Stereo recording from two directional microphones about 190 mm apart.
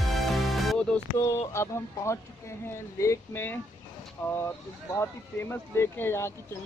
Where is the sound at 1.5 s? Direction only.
15° left (ahead or behind).